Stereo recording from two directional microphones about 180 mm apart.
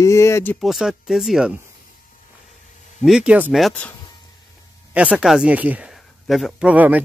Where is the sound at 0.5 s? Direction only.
Centre (ahead or behind).